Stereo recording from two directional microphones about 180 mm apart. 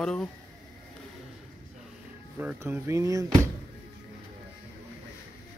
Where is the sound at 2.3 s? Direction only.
5° right (ahead or behind).